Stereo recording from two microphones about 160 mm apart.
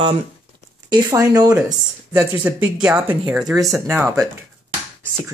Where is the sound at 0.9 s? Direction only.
25° right (ahead or behind).